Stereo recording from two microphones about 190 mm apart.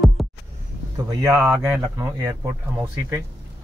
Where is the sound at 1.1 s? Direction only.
15° right (ahead or behind).